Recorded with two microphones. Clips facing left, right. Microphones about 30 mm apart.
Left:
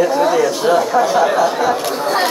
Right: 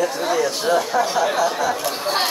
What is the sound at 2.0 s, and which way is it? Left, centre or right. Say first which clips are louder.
Speech: left 5 dB; centre.